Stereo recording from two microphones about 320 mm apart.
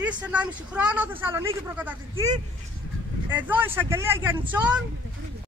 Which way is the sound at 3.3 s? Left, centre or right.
Centre.